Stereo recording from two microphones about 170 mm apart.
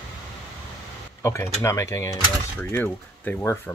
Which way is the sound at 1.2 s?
15° left (ahead or behind).